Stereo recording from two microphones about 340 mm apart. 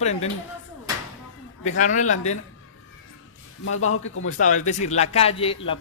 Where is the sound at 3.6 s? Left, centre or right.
Left.